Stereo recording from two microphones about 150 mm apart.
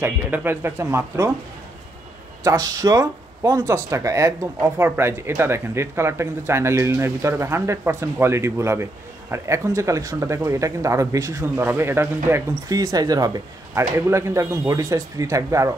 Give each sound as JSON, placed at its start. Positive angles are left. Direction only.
{"t": 0.0, "sound": "speech", "side_deg": -15}
{"t": 2.4, "sound": "speech", "side_deg": -25}